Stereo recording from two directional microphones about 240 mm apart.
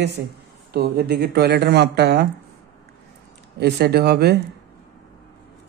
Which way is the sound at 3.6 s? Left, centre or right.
Right.